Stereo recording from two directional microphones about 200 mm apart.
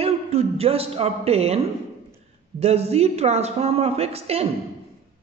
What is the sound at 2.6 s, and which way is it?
Speech, 30° right (ahead or behind).